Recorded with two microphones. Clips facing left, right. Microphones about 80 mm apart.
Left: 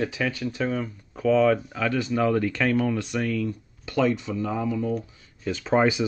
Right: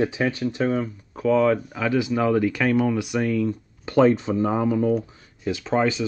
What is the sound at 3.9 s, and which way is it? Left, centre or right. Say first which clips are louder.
Speech: right 6 dB; right.